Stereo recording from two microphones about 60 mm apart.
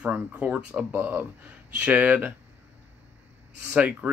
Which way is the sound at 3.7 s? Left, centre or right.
Right.